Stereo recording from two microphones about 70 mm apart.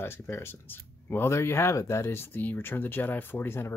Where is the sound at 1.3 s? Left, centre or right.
Left.